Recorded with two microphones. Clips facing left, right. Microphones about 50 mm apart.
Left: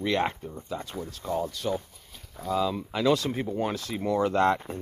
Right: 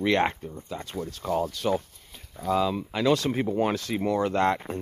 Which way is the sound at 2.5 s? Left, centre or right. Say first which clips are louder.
Right 2 dB; right.